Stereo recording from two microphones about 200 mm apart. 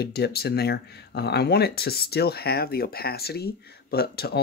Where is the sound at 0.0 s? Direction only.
55° left (ahead or behind).